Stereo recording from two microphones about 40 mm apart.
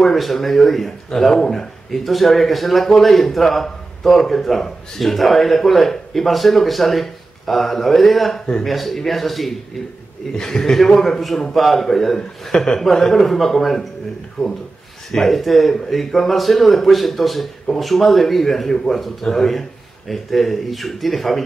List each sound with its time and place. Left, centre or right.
0.0 s speech: centre
10.3 s a man's voice: centre